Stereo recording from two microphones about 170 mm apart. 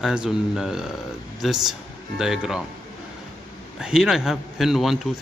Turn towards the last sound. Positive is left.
turn(degrees=0)  # may be behind; listen again after turning